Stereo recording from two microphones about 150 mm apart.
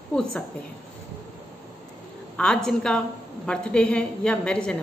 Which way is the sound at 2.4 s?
5° left (ahead or behind).